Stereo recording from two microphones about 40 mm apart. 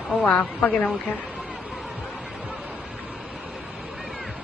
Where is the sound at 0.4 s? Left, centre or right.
Left.